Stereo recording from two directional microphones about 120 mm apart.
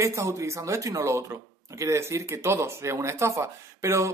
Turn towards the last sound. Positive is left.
turn(degrees=-25)  # may be behind; listen again after turning